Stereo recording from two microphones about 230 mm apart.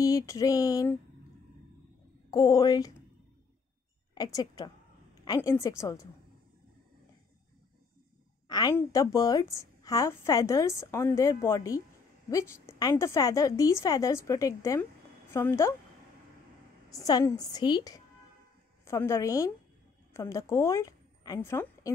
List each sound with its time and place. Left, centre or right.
0.0 s a woman's voice: centre
2.3 s a woman's voice: centre
4.1 s a woman's voice: centre
8.5 s a woman's voice: centre
16.9 s a woman's voice: centre